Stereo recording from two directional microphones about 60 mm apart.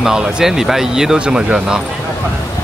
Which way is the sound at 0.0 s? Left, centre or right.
Centre.